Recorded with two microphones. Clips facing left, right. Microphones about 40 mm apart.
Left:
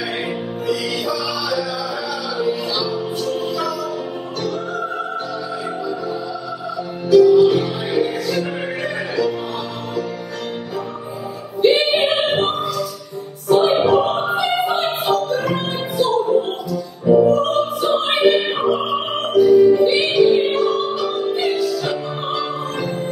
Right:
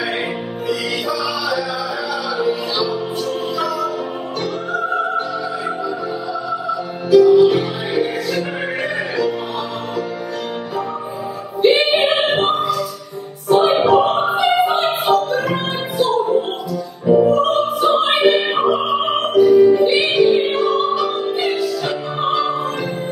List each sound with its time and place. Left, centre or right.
0.7 s music: centre
6.7 s music: centre
11.6 s music: centre
17.5 s opera: centre
17.8 s music: centre